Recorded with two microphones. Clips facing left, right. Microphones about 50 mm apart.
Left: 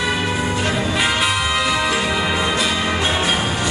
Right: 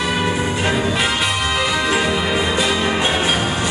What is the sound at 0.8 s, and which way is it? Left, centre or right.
Music, centre.